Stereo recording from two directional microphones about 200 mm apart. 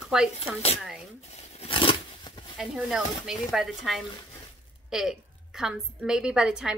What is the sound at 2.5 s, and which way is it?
A woman's voice, centre (ahead or behind).